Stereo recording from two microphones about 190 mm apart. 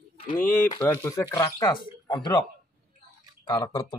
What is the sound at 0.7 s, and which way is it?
Speech, 10° left (ahead or behind).